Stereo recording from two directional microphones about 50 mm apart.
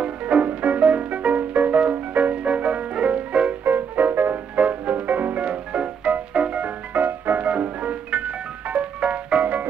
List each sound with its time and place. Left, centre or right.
0.0 s music: right
3.6 s music: right
4.6 s music: right
5.4 s music: right
7.4 s music: right